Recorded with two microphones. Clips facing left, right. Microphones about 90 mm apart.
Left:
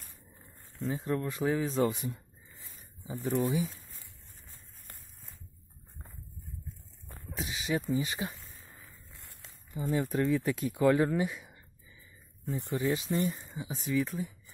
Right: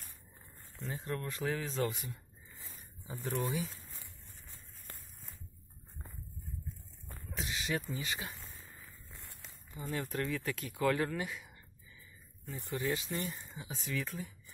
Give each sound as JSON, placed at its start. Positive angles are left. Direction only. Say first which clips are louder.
{"t": 0.8, "sound": "speech", "louder": "left 7 dB", "side_deg": 15}
{"t": 3.1, "sound": "speech", "louder": "left 6 dB", "side_deg": 10}
{"t": 7.1, "sound": "a sound", "louder": "left 2 dB", "side_deg": 5}
{"t": 7.9, "sound": "speech", "louder": "left 8 dB", "side_deg": 20}
{"t": 9.8, "sound": "speech", "louder": "left 7 dB", "side_deg": 20}